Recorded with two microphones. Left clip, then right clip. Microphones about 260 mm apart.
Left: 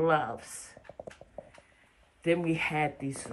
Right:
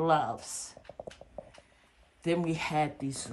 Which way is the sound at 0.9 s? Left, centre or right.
Left.